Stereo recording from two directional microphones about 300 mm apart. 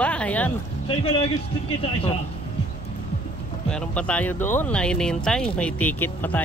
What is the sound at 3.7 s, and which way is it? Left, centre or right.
Speech, centre.